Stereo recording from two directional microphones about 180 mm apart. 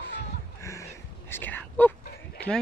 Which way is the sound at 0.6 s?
15° left (ahead or behind).